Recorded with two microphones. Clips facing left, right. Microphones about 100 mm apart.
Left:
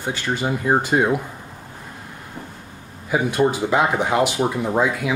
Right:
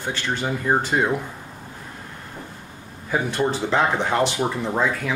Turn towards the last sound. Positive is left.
turn(degrees=10)  # may be behind; listen again after turning